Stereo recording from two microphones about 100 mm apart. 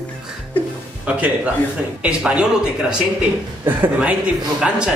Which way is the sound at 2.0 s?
10° right (ahead or behind).